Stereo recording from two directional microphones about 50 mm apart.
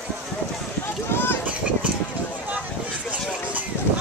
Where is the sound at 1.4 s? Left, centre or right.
Right.